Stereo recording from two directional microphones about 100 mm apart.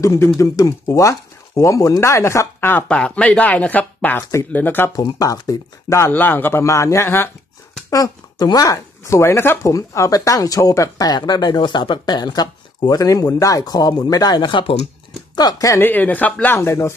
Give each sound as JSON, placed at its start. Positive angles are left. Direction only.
{"t": 0.0, "sound": "speech", "side_deg": 35}
{"t": 2.9, "sound": "speech", "side_deg": 10}
{"t": 4.9, "sound": "speech", "side_deg": 35}
{"t": 7.9, "sound": "speech", "side_deg": 40}
{"t": 15.3, "sound": "speech", "side_deg": 45}
{"t": 15.7, "sound": "speech", "side_deg": 20}